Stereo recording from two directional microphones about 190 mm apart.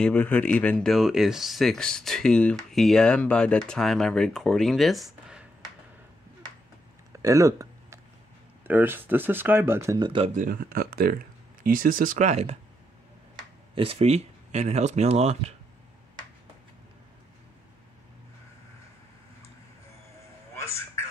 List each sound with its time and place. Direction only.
0.0 s speech: 5° left (ahead or behind)
7.1 s a sound: 15° right (ahead or behind)
8.6 s speech: 10° right (ahead or behind); by 10.3 s 25° right (ahead or behind)
10.3 s speech: 50° right (ahead or behind)
13.7 s speech: 30° right (ahead or behind)
20.5 s a sound: 15° left (ahead or behind)